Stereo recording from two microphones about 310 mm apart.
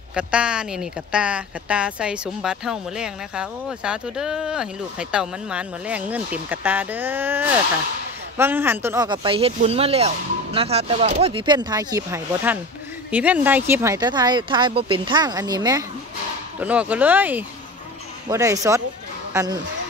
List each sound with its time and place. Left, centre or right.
0.1 s speech: centre